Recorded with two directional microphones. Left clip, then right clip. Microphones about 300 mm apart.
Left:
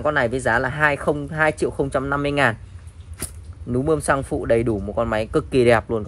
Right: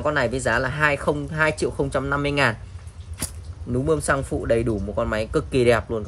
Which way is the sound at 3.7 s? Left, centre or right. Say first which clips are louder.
Left 2 dB; centre.